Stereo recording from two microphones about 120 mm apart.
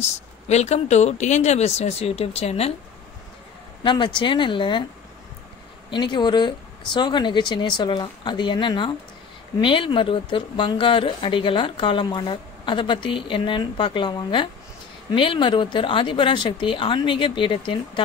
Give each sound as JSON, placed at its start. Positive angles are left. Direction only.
{"t": 0.0, "sound": "speech", "side_deg": 65}
{"t": 3.8, "sound": "a woman's voice", "side_deg": 40}
{"t": 5.9, "sound": "a woman's voice", "side_deg": 40}